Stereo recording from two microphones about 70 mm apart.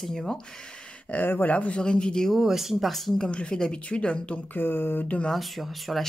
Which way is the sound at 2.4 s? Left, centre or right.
Centre.